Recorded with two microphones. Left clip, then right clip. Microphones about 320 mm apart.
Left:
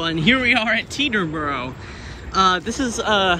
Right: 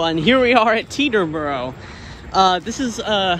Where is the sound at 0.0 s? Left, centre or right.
Centre.